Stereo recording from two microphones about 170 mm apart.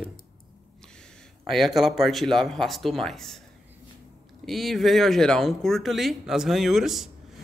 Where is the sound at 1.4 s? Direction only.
Centre (ahead or behind).